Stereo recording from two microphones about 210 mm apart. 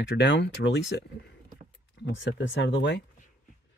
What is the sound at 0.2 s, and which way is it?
Speech, 55° left (ahead or behind).